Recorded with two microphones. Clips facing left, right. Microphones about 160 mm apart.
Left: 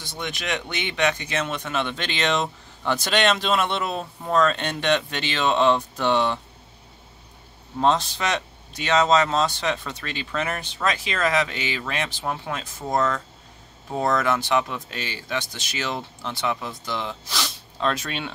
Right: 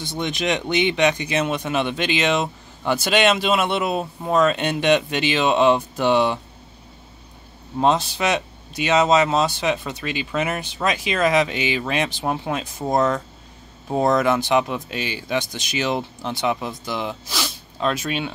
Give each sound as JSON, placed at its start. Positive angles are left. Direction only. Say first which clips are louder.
{"t": 0.0, "sound": "speech", "louder": "right 7 dB", "side_deg": -20}
{"t": 7.8, "sound": "speech", "louder": "right 2 dB", "side_deg": -10}